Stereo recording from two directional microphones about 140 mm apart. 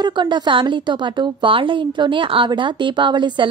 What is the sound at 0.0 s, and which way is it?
A woman's voice, 35° right (ahead or behind).